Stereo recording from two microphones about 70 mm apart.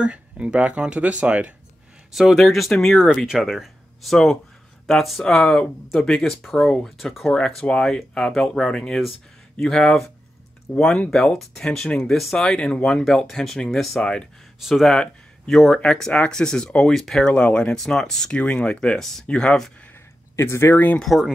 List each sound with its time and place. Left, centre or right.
0.0 s speech: centre
2.1 s speech: centre
7.3 s speech: centre
14.6 s speech: centre
17.7 s speech: centre
18.4 s speech: centre
20.3 s speech: left
20.7 s speech: left
21.0 s speech: centre